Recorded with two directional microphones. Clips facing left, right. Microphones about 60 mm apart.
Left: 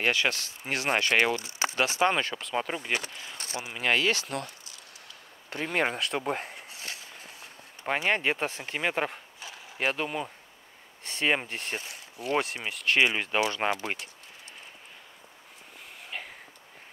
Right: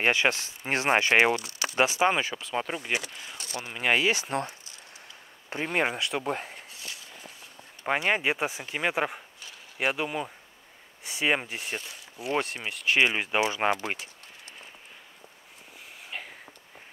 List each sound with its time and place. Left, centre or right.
0.0 s speech: right
1.4 s speech: left
2.0 s speech: centre
3.0 s speech: left
3.8 s speech: centre
4.3 s speech: right
5.7 s speech: centre
7.8 s speech: centre
16.1 s a sound: centre